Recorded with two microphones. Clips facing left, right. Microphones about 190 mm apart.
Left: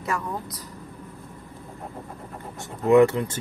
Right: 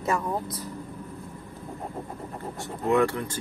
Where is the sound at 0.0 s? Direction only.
25° right (ahead or behind).